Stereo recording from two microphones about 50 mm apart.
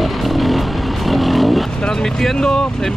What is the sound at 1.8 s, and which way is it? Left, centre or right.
Vehicle, centre.